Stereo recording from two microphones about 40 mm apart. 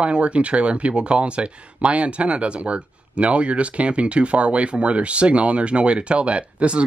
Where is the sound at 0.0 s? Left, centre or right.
Right.